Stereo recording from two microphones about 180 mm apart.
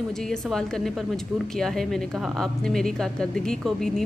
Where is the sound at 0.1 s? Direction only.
5° left (ahead or behind).